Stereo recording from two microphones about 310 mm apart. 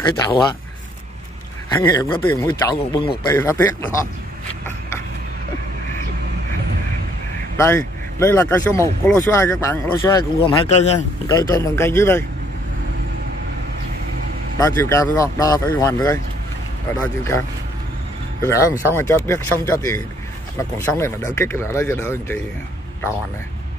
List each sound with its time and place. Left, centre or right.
0.2 s speech: centre
1.8 s speech: centre
7.5 s speech: centre
14.6 s speech: centre